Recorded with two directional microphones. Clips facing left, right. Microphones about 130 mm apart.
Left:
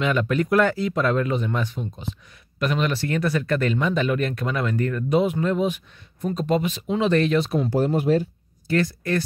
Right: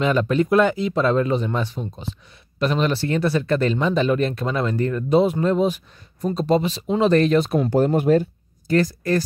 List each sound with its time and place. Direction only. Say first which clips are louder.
0.0 s speech: right 3 dB; 35° right (ahead or behind)